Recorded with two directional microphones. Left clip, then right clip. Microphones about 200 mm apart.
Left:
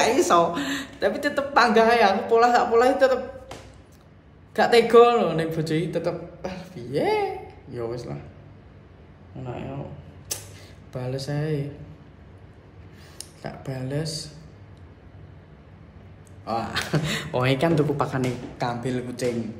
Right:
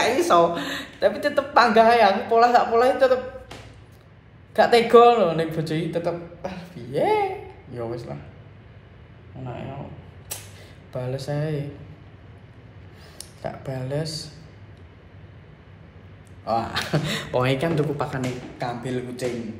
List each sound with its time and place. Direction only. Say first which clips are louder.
0.0 s speech: right 1 dB; 15° left (ahead or behind)
4.6 s a man's voice: right 1 dB; 10° left (ahead or behind)
9.4 s speech: even; 15° left (ahead or behind)
11.0 s speech: right 2 dB; 10° left (ahead or behind)
13.2 s speech: right 4 dB; 10° left (ahead or behind)
16.4 s speech: right 3 dB; 10° left (ahead or behind)